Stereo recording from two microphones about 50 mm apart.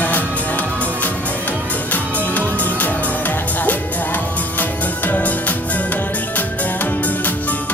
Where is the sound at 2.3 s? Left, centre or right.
Left.